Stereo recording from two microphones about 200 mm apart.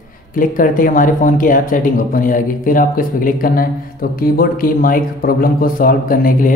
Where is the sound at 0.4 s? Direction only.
45° left (ahead or behind).